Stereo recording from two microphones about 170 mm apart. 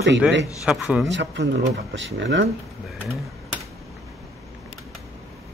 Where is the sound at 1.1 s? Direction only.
90° right.